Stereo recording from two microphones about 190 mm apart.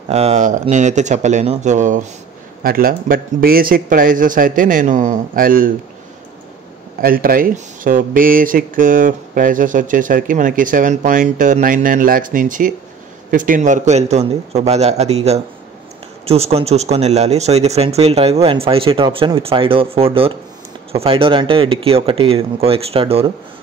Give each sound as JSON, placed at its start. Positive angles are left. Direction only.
{"t": 0.1, "sound": "a man's voice", "side_deg": -35}
{"t": 7.0, "sound": "a man's voice", "side_deg": -50}